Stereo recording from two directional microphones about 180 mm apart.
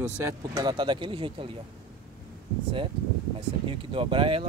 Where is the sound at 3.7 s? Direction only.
30° right (ahead or behind).